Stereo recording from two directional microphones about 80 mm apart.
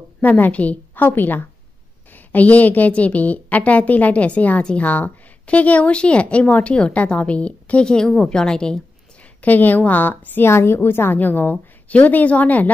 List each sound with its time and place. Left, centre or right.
0.2 s a woman's voice: centre
9.4 s a woman's voice: left